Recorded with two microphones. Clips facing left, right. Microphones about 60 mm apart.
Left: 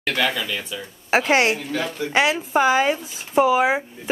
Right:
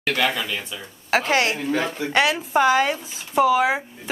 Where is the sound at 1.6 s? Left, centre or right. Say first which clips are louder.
Right 2 dB; right.